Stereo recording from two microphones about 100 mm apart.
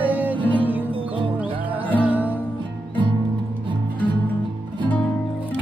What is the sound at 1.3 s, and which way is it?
Music, 15° right (ahead or behind).